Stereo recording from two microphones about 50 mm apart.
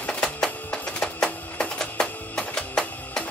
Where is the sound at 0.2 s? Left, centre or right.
Left.